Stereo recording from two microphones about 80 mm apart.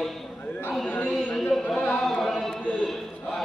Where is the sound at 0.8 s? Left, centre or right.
Left.